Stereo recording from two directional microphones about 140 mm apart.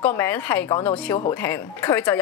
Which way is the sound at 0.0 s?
15° left (ahead or behind).